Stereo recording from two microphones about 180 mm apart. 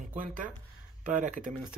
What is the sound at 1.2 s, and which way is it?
Speech, 45° right (ahead or behind).